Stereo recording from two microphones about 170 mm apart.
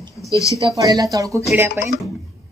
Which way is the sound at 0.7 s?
20° right (ahead or behind).